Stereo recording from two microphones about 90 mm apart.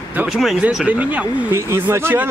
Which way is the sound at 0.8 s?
15° right (ahead or behind).